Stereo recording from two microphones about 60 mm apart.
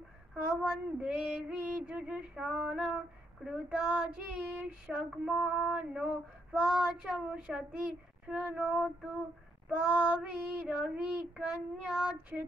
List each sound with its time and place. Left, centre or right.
0.4 s female singing: centre
3.4 s child singing: centre
5.3 s female singing: centre
9.8 s child singing: right